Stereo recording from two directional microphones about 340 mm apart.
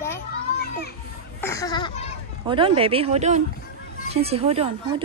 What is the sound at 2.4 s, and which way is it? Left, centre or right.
Speech, centre.